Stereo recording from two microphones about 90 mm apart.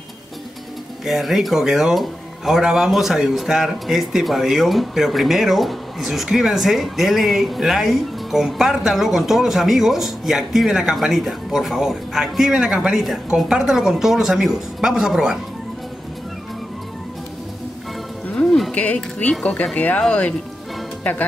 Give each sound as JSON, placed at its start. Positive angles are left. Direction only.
{"t": 1.0, "sound": "speech", "side_deg": 0}
{"t": 18.3, "sound": "music", "side_deg": 5}
{"t": 19.4, "sound": "speech", "side_deg": 15}